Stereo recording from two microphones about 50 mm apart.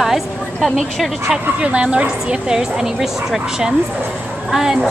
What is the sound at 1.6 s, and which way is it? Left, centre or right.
Speech, right.